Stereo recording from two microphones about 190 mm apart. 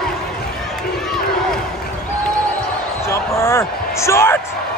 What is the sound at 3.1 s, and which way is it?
Basketball bounce, 15° left (ahead or behind).